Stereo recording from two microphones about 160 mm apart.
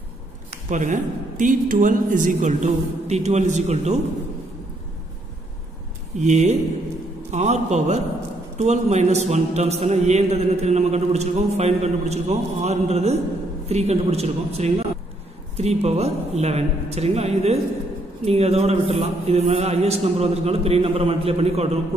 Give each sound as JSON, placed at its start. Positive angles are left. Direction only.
{"t": 0.5, "sound": "a man's voice", "side_deg": -50}
{"t": 6.1, "sound": "a man's voice", "side_deg": -45}